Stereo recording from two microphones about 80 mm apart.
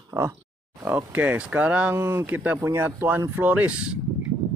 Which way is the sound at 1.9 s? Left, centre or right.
Right.